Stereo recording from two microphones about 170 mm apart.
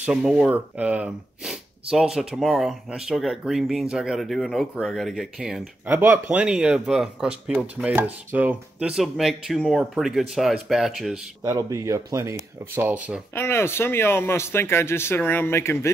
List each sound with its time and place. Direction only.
0.0 s speech: 5° right (ahead or behind)
11.4 s speech: 15° right (ahead or behind)
12.7 s speech: 10° right (ahead or behind)
13.3 s speech: 15° left (ahead or behind)